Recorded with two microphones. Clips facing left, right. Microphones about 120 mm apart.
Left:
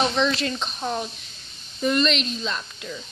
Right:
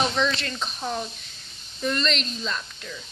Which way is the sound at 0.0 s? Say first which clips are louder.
Left 2 dB; 5° left (ahead or behind).